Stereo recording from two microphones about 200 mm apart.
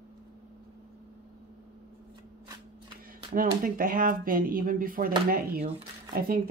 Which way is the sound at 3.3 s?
45° right (ahead or behind).